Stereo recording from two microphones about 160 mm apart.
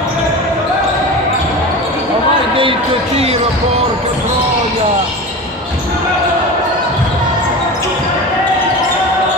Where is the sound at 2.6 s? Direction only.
35° right (ahead or behind).